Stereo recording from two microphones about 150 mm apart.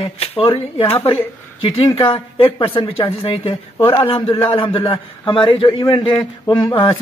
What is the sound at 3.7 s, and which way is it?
Speech, 25° left (ahead or behind).